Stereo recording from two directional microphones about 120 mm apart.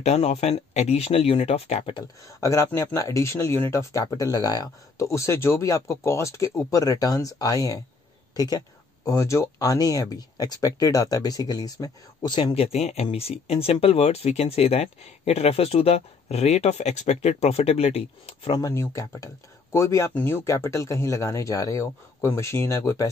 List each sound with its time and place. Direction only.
0.0 s speech: 65° left (ahead or behind)
2.2 s speech: 25° left (ahead or behind)
12.5 s speech: 60° left (ahead or behind)
18.6 s speech: 25° left (ahead or behind)